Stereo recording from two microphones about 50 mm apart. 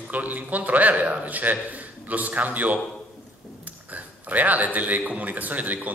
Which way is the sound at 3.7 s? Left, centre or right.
Right.